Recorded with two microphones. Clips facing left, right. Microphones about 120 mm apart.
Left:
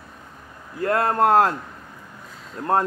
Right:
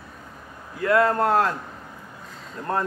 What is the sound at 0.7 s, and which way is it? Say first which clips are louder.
Speech: right 1 dB; 40° left (ahead or behind).